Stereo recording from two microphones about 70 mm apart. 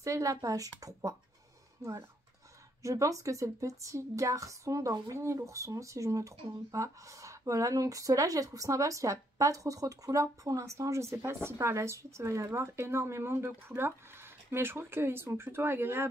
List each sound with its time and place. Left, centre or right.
0.0 s speech: right